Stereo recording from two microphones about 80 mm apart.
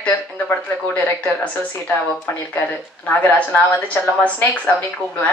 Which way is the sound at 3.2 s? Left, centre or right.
Centre.